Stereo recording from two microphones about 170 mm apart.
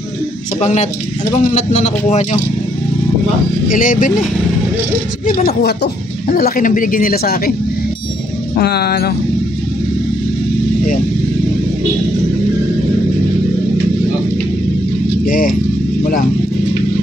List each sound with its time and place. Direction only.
0.6 s a man's voice: 45° left (ahead or behind)
3.7 s a man's voice: 50° left (ahead or behind)
5.6 s speech: 70° left (ahead or behind)
8.5 s speech: 70° left (ahead or behind)
15.2 s speech: 55° left (ahead or behind)